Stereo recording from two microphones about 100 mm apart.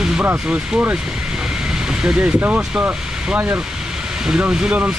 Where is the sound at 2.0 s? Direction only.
15° right (ahead or behind).